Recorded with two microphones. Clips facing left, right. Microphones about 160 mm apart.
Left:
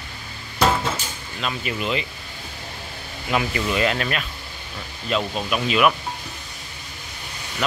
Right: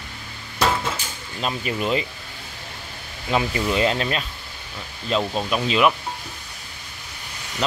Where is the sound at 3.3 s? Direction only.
25° right (ahead or behind).